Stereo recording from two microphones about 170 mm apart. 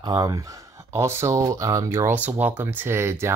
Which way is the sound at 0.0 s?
25° right (ahead or behind).